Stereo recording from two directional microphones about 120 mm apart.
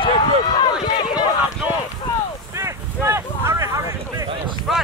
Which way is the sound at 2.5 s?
20° right (ahead or behind).